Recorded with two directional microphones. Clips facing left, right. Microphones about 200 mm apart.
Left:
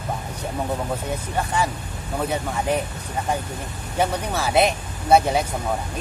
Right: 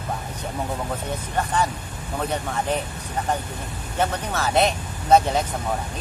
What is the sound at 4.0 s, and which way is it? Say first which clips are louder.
Speech: left 2 dB; 10° left (ahead or behind).